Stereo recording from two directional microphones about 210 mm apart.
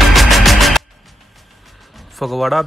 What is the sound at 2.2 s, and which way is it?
Speech, centre (ahead or behind).